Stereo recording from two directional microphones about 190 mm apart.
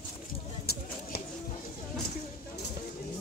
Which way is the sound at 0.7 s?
55° left (ahead or behind).